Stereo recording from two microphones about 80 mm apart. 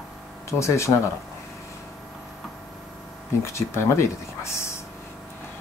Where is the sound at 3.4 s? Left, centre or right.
Left.